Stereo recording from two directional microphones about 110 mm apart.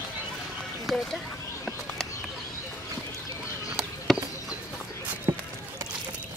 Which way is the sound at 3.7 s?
5° right (ahead or behind).